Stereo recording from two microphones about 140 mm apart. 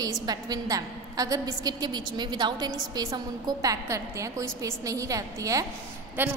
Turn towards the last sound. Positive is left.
turn(degrees=-15)  # may be behind; listen again after turning